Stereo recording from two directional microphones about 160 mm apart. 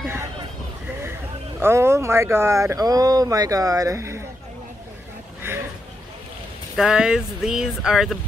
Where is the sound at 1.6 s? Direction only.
15° right (ahead or behind).